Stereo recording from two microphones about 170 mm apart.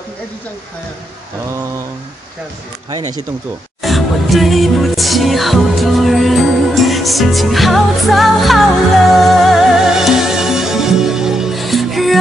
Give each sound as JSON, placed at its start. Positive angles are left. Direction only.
{"t": 2.9, "sound": "speech", "side_deg": -25}
{"t": 3.8, "sound": "music", "side_deg": 0}